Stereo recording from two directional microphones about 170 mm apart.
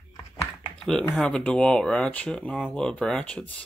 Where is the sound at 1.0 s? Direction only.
5° left (ahead or behind).